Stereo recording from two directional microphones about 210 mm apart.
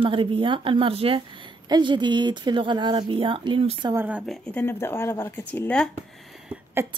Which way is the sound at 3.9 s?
10° right (ahead or behind).